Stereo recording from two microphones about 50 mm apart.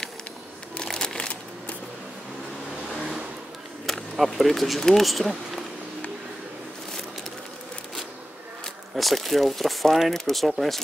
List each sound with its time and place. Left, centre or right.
0.8 s a sound: centre
2.9 s vehicle: centre
3.8 s speech: centre
8.9 s speech: centre